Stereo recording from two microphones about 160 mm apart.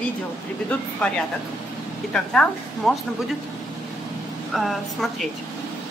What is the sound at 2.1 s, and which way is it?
Speech, 5° left (ahead or behind).